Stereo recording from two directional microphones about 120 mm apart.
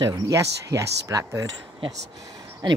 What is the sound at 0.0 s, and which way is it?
Speech, 30° right (ahead or behind).